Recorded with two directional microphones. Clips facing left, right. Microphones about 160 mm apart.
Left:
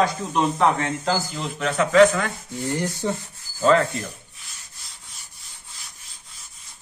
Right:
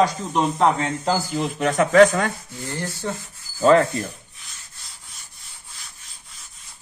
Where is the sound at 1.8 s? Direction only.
35° right (ahead or behind).